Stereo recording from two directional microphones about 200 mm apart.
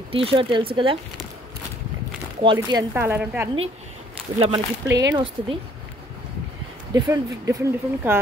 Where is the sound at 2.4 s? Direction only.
20° right (ahead or behind).